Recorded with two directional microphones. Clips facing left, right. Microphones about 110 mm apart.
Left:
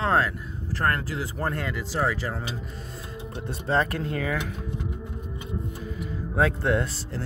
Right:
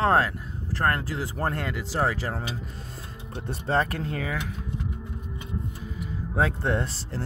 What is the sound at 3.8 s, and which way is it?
Speech, 30° right (ahead or behind).